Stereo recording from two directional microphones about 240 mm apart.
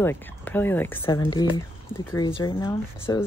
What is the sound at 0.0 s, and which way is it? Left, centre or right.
Speech, centre.